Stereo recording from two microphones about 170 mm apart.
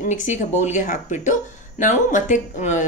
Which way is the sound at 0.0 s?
45° left (ahead or behind).